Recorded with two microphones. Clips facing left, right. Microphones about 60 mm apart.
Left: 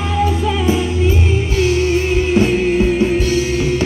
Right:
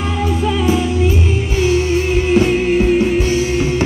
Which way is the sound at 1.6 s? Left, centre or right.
Right.